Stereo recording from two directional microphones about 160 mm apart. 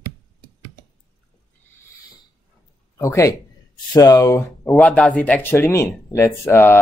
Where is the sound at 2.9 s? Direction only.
15° left (ahead or behind).